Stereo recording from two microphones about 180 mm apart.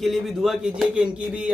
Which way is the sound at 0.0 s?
Centre (ahead or behind).